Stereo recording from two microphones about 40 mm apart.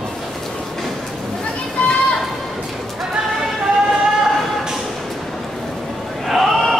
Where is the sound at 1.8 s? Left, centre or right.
Left.